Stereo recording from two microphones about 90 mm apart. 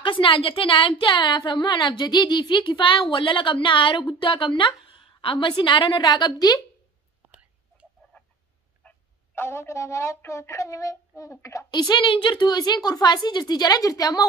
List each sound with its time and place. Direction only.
0.0 s a woman's voice: 75° left (ahead or behind); by 6.6 s 45° left (ahead or behind)
8.8 s a woman's voice: 25° left (ahead or behind)
11.9 s a woman's voice: 65° left (ahead or behind); by 14.2 s 45° left (ahead or behind)